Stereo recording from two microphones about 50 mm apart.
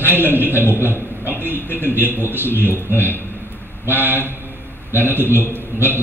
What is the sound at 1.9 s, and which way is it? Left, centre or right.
A man's voice, right.